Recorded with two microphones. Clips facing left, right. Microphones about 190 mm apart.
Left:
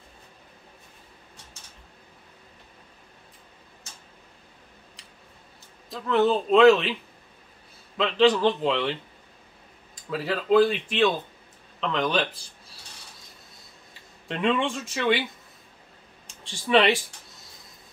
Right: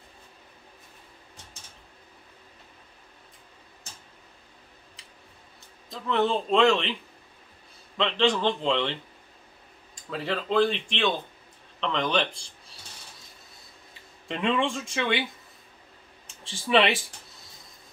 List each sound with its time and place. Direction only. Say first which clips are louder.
5.9 s speech: left 4 dB; centre (ahead or behind)
8.0 s speech: left 4 dB; 5° left (ahead or behind)
10.0 s speech: left 3 dB; 5° left (ahead or behind)
14.2 s speech: left 1 dB; centre (ahead or behind)
16.3 s speech: left 1 dB; centre (ahead or behind)